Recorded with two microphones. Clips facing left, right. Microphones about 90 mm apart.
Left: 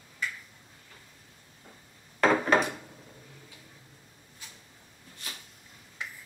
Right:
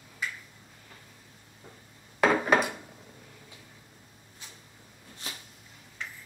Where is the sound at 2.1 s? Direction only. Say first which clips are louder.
Even; 10° right (ahead or behind).